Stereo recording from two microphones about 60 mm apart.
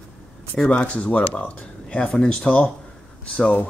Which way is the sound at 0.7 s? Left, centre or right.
Left.